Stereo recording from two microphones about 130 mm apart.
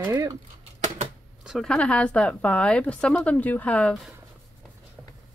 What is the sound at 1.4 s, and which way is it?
Speech, 5° left (ahead or behind).